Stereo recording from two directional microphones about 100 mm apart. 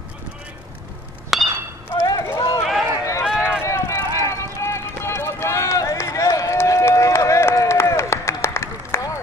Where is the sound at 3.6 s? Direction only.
25° left (ahead or behind).